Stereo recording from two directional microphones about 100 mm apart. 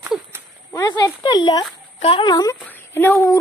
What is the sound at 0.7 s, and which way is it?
Speech, 45° left (ahead or behind).